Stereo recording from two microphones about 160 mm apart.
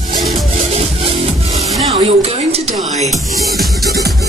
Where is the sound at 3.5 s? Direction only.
Centre (ahead or behind).